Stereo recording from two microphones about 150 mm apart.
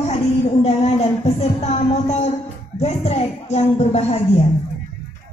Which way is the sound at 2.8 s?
45° left (ahead or behind).